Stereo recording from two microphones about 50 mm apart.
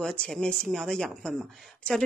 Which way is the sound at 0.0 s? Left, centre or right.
Left.